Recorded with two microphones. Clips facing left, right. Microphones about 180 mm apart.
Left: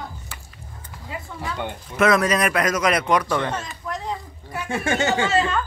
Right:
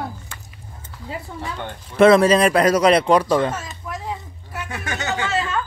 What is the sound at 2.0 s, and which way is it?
A man's voice, 30° right (ahead or behind).